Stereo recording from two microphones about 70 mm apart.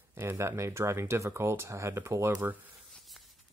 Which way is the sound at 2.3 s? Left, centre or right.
Right.